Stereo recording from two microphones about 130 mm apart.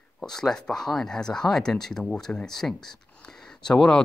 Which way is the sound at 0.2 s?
5° left (ahead or behind).